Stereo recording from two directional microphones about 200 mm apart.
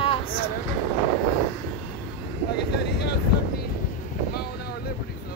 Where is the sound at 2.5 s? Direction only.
55° left (ahead or behind).